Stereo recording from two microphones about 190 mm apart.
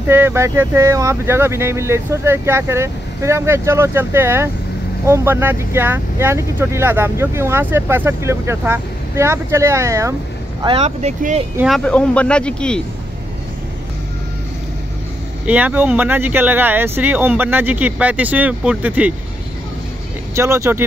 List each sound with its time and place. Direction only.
0.1 s speech: 10° right (ahead or behind)
10.6 s speech: 30° right (ahead or behind)
11.5 s speech: centre (ahead or behind)
15.4 s speech: 10° right (ahead or behind)
20.3 s speech: 15° right (ahead or behind)